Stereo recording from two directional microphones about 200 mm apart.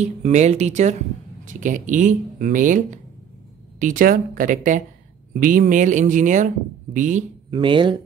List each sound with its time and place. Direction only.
0.0 s speech: 35° right (ahead or behind)
7.5 s speech: 25° right (ahead or behind)